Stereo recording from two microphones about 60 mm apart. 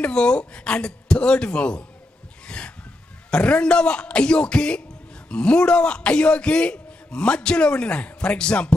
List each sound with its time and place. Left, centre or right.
0.0 s a man's voice: centre
2.4 s a sound: centre
3.3 s a man's voice: centre